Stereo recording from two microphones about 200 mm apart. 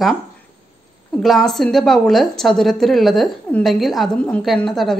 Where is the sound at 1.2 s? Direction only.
Centre (ahead or behind).